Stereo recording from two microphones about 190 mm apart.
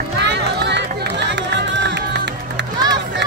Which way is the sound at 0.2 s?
65° right (ahead or behind).